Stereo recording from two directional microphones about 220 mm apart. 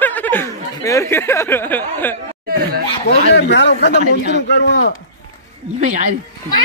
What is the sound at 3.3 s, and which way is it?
Speech, 50° left (ahead or behind).